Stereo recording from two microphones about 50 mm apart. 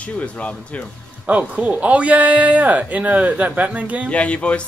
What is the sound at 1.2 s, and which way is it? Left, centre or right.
Speech, right.